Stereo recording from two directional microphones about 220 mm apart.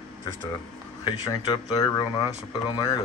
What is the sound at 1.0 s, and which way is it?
Speech, 20° left (ahead or behind).